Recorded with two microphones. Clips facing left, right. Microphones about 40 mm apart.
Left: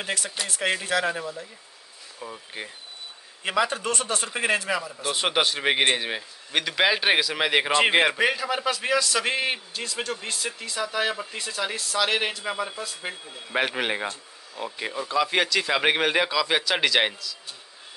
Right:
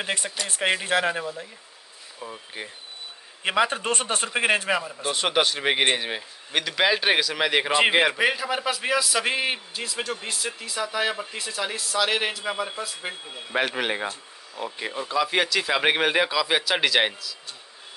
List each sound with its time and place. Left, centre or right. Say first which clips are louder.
0.5 s a man's voice: right 2 dB; right
2.1 s speech: even; centre
3.4 s a man's voice: right 2 dB; right
5.1 s a man's voice: right 1 dB; centre